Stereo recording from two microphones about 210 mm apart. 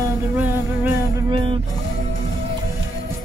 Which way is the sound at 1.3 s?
25° right (ahead or behind).